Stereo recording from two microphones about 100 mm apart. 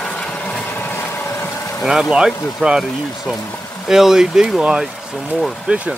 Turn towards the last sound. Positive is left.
turn(degrees=-5)  # may be behind; listen again after turning